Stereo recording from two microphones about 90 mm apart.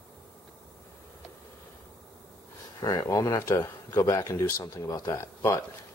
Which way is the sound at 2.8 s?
40° left (ahead or behind).